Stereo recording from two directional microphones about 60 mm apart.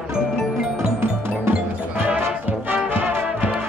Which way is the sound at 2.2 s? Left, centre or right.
Right.